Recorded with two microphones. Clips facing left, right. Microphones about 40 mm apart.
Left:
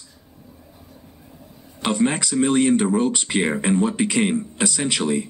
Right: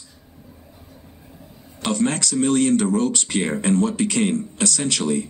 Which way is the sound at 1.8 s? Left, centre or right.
Centre.